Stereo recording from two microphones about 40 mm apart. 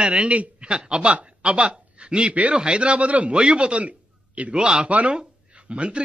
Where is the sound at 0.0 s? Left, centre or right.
Right.